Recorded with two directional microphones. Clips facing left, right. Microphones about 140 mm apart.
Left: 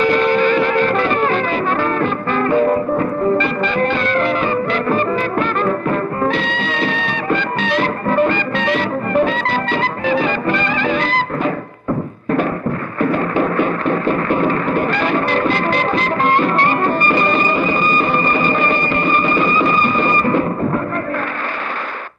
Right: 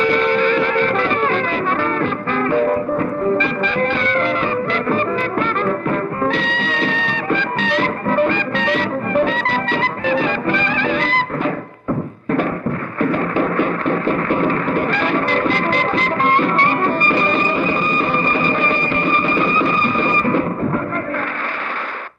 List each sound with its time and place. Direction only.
0.0 s music: 20° left (ahead or behind)
13.0 s music: 20° left (ahead or behind)